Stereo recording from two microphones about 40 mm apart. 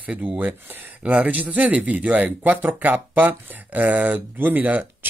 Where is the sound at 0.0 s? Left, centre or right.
Right.